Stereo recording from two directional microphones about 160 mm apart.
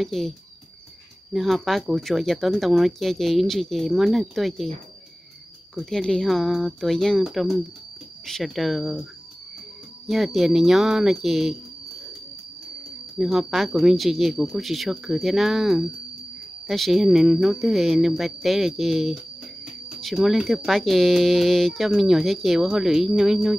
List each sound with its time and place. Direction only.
0.0 s speech: centre (ahead or behind)
5.8 s speech: 5° left (ahead or behind)
10.0 s speech: centre (ahead or behind)
13.2 s speech: centre (ahead or behind)